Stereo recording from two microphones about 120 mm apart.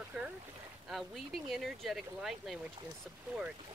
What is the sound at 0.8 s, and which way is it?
Speech, centre (ahead or behind).